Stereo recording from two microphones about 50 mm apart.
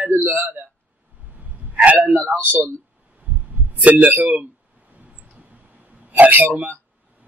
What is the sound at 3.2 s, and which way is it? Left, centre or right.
Heart sounds, right.